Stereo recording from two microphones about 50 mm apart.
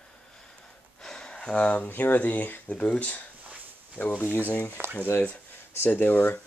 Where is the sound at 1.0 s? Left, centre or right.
Centre.